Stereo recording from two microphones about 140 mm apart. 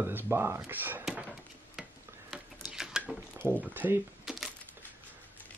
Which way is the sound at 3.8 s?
10° right (ahead or behind).